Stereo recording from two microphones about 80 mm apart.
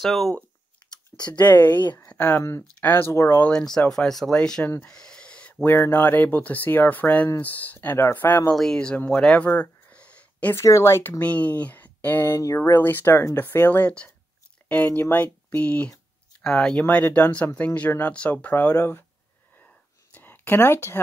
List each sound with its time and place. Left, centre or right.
0.0 s speech: centre
0.9 s speech: centre
2.0 s a sound: left
2.4 s speech: left
3.4 s speech: centre
8.5 s speech: centre
9.6 s a sound: centre
10.5 s speech: left
11.2 s speech: centre
16.8 s speech: left
20.2 s a sound: left